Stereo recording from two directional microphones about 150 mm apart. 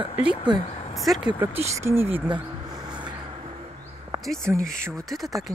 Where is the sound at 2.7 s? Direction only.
30° right (ahead or behind).